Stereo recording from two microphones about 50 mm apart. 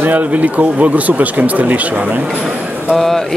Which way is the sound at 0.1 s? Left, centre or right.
Right.